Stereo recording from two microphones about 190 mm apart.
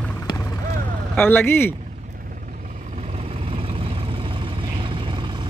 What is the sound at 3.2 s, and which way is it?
Vehicle, 30° right (ahead or behind).